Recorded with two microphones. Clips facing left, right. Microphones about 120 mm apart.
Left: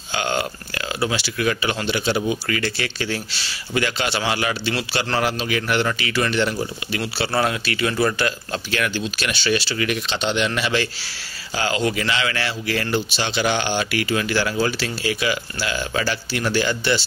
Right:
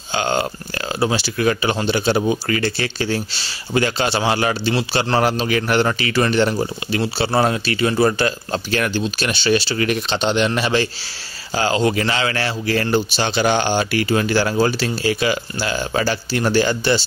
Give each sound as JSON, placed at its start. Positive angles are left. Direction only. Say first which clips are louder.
{"t": 0.1, "sound": "speech", "louder": "right 3 dB", "side_deg": -30}